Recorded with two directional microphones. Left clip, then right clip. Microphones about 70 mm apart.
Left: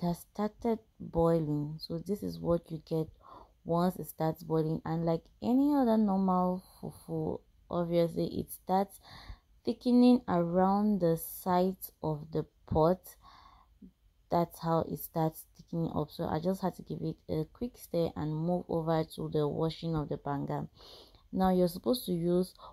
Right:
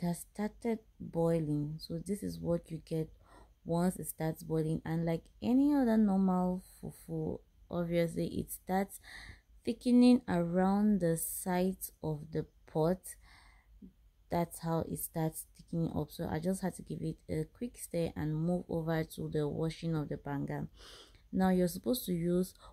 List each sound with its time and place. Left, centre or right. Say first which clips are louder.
0.0 s a sound: left 4 dB; left
1.8 s speech: left 3 dB; left
6.0 s speech: left 3 dB; centre
6.4 s a sound: left 4 dB; left
7.2 s speech: left 4 dB; left
10.4 s speech: left 4 dB; centre
11.0 s a woman's voice: left 4 dB; left
20.8 s speech: left 1 dB; centre
21.4 s speech: left 4 dB; left